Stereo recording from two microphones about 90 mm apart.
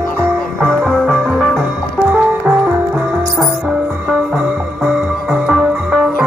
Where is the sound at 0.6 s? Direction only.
5° right (ahead or behind).